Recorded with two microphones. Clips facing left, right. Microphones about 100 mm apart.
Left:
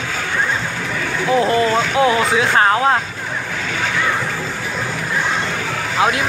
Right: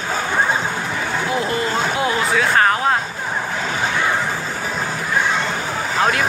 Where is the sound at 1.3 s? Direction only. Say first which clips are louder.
Left 8 dB; 30° left (ahead or behind).